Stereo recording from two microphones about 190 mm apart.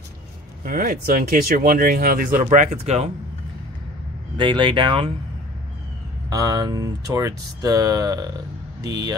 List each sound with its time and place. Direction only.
0.7 s speech: 50° right (ahead or behind)
4.4 s speech: 25° right (ahead or behind)
6.3 s speech: 20° right (ahead or behind)